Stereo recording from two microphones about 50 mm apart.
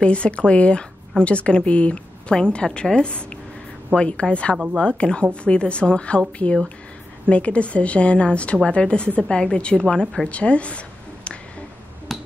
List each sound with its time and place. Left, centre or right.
0.0 s a woman's voice: left
7.2 s a woman's voice: left
12.1 s a sound: centre